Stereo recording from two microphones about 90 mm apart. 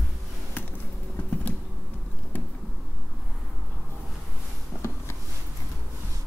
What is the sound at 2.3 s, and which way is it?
Bee, 20° left (ahead or behind).